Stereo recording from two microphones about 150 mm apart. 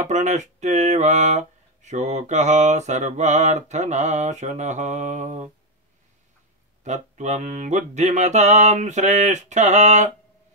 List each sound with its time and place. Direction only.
0.0 s mantra: 50° right (ahead or behind)
6.8 s mantra: 50° right (ahead or behind)